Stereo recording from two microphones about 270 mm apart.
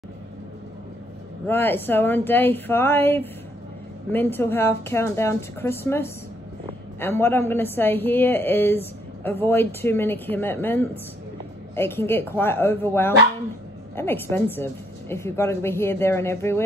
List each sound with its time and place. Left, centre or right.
1.5 s a woman's voice: centre